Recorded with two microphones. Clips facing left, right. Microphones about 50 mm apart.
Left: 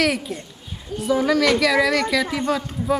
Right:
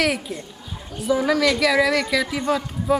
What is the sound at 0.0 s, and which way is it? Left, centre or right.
Speech, centre.